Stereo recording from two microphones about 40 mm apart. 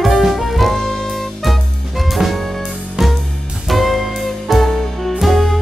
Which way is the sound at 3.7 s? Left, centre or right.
Centre.